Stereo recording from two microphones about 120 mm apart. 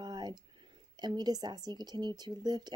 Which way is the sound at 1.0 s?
35° right (ahead or behind).